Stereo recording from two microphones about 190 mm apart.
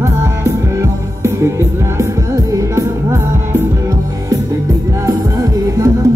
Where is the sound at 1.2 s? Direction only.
15° right (ahead or behind).